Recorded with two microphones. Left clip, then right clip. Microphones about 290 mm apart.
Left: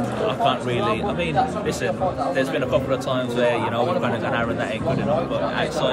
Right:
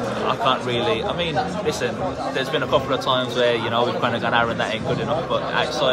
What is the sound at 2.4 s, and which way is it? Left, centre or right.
A man's voice, centre.